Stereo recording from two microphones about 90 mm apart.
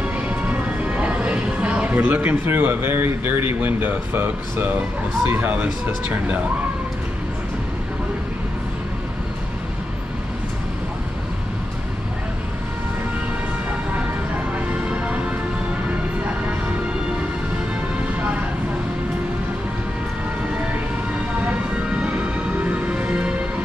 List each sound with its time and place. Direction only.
0.0 s music: 15° right (ahead or behind)
5.2 s speech: 20° right (ahead or behind)
14.7 s music: 15° right (ahead or behind)
21.5 s music: 15° right (ahead or behind)